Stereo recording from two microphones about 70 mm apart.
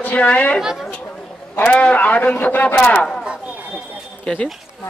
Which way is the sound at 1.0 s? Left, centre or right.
Left.